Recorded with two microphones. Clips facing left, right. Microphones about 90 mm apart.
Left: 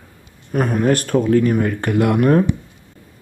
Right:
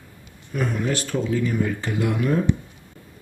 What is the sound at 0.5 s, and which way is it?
Speech, 50° left (ahead or behind).